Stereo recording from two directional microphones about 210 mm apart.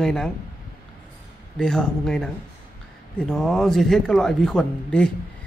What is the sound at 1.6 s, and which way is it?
Speech, 5° left (ahead or behind).